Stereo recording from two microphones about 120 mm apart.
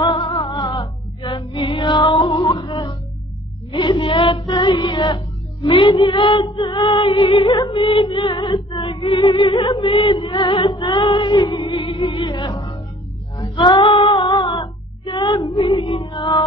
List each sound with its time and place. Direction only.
0.0 s music: 40° left (ahead or behind)
9.3 s music: 40° left (ahead or behind)
10.7 s female singing: 50° left (ahead or behind)
11.5 s music: 45° left (ahead or behind)
13.4 s female singing: 40° left (ahead or behind)
15.4 s music: 35° left (ahead or behind)
15.9 s music: 45° left (ahead or behind)